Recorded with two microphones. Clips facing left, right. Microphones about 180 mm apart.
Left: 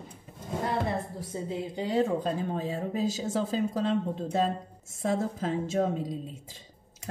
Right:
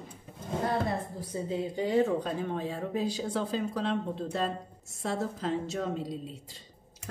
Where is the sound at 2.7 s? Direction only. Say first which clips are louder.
Left 2 dB; 45° left (ahead or behind).